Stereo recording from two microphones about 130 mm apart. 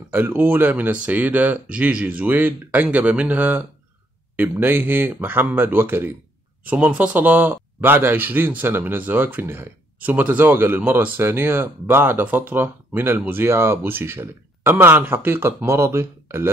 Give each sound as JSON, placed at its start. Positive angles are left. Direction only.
{"t": 0.1, "sound": "speech", "side_deg": -15}